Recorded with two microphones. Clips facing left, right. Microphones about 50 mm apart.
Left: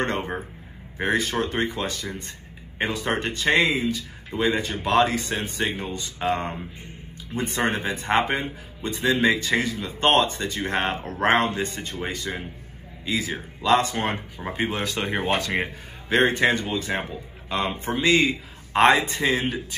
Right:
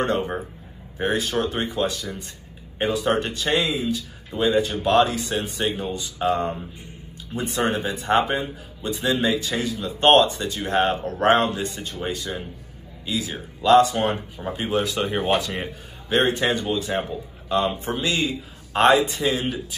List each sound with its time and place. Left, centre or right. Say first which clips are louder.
0.0 s a man's voice: right 3 dB; left